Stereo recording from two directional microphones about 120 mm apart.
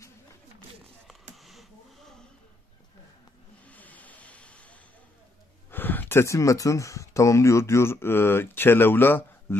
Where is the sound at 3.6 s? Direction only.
15° left (ahead or behind).